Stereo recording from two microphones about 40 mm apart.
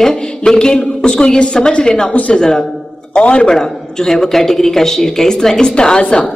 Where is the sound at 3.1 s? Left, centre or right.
Left.